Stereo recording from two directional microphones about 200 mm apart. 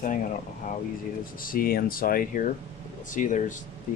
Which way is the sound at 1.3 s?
45° left (ahead or behind).